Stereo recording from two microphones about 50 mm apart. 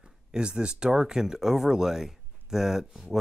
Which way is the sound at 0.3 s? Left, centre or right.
Centre.